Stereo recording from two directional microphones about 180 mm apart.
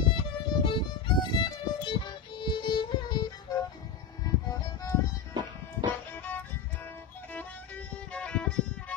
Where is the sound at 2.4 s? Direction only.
25° left (ahead or behind).